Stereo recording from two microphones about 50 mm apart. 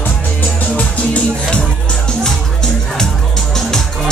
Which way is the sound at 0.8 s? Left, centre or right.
Left.